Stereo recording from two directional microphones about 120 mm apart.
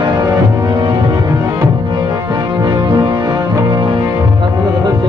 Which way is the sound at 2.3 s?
40° right (ahead or behind).